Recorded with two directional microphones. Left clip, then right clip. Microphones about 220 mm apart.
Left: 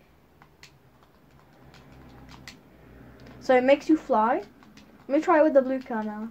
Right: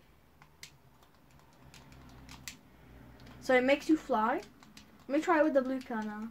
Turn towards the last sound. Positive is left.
turn(degrees=-15)  # may be behind; listen again after turning